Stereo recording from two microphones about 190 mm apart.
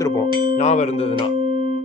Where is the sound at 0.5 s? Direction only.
35° left (ahead or behind).